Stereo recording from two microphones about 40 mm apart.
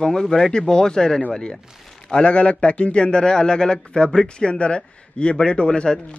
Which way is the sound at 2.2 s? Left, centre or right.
Left.